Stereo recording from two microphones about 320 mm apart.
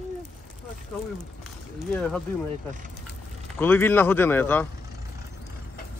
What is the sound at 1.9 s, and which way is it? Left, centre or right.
Speech, centre.